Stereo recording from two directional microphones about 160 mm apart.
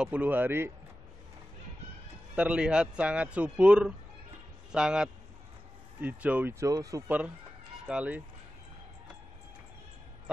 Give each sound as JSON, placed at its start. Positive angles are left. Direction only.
{"t": 0.0, "sound": "a man's voice", "side_deg": -10}
{"t": 2.3, "sound": "a man's voice", "side_deg": -5}
{"t": 6.7, "sound": "speech", "side_deg": -20}
{"t": 7.1, "sound": "a man's voice", "side_deg": -10}